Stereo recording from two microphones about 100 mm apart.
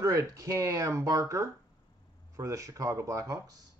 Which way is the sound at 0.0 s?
35° right (ahead or behind).